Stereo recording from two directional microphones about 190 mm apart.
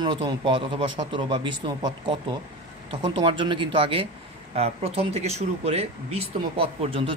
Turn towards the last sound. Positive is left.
turn(degrees=-30)  # may be behind; listen again after turning